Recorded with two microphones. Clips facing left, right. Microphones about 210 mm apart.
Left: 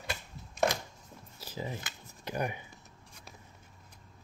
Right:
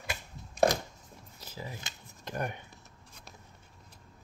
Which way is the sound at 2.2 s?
5° left (ahead or behind).